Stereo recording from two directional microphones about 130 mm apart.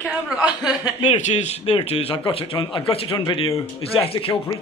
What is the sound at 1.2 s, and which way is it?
Speech, 60° left (ahead or behind).